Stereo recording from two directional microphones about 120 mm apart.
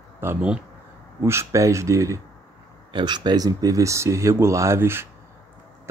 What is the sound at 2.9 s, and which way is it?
Speech, 40° right (ahead or behind).